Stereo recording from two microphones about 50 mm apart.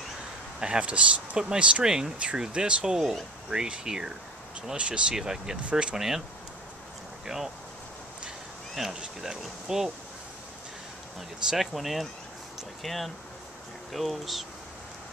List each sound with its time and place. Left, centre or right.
0.6 s speech: right
5.1 s speech: centre
5.9 s speech: centre
7.2 s speech: centre
8.7 s speech: centre
11.1 s speech: centre